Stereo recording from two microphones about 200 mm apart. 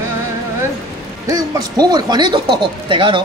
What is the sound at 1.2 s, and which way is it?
Speech, 20° right (ahead or behind).